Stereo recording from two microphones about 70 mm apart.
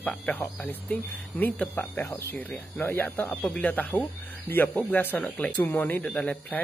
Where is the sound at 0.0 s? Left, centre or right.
Left.